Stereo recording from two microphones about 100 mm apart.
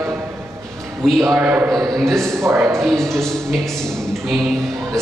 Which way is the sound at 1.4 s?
15° right (ahead or behind).